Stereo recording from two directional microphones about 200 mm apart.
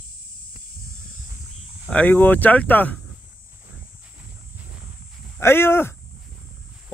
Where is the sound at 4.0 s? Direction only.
10° right (ahead or behind).